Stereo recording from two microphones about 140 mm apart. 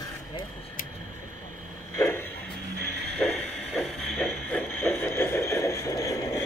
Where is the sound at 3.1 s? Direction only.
5° left (ahead or behind).